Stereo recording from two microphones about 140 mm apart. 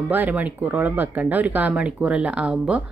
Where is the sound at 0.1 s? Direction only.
10° right (ahead or behind).